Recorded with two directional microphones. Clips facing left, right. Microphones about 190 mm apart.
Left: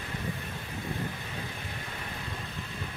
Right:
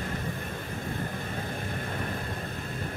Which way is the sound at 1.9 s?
50° right (ahead or behind).